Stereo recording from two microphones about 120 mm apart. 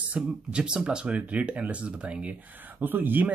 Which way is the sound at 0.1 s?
10° right (ahead or behind).